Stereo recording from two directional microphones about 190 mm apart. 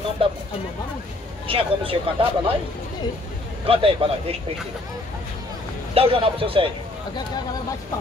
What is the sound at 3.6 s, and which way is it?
Speech, 30° right (ahead or behind).